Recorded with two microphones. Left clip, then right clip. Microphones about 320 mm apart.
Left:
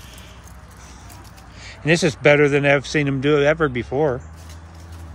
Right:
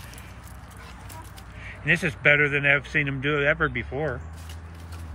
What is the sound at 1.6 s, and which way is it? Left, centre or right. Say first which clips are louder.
Speech: left 5 dB; centre.